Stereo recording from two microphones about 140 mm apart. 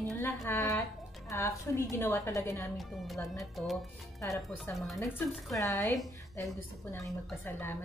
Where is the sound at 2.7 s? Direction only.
Centre (ahead or behind).